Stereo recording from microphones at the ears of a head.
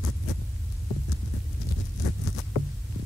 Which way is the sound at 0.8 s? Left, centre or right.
Left.